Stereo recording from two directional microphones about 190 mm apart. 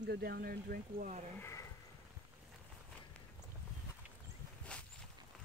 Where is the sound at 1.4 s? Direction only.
15° left (ahead or behind).